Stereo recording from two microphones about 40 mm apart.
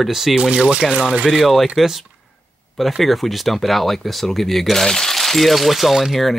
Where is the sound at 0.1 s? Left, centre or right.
Centre.